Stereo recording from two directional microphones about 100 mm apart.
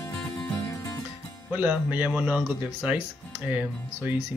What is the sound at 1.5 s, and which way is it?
Speech, 15° right (ahead or behind).